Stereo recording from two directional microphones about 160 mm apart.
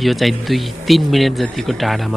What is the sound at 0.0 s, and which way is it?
Speech, centre (ahead or behind).